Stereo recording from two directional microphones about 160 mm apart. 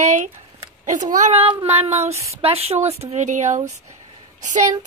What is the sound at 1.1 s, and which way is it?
Child singing, 45° right (ahead or behind).